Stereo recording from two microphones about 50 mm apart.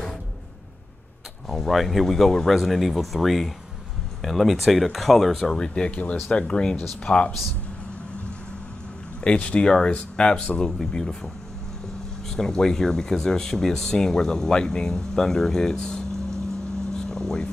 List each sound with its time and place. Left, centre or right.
1.5 s speech: centre
5.6 s speech: left
9.2 s speech: left
12.3 s speech: centre
16.9 s vehicle: centre